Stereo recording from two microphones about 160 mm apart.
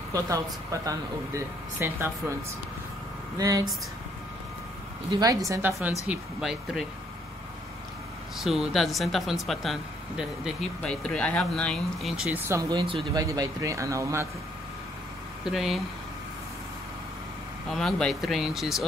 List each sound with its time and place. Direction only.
0.1 s speech: 20° right (ahead or behind)
3.3 s speech: 20° right (ahead or behind)
5.1 s speech: 20° right (ahead or behind)
6.0 s speech: 5° right (ahead or behind)
8.5 s speech: centre (ahead or behind)
12.4 s speech: 20° right (ahead or behind)
15.4 s speech: centre (ahead or behind)
17.6 s speech: 5° left (ahead or behind)